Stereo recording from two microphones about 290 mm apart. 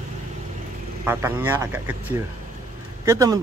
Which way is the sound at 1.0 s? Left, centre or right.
Centre.